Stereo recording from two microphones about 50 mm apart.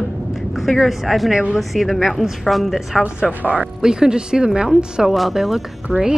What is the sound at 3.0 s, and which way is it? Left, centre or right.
Speech, right.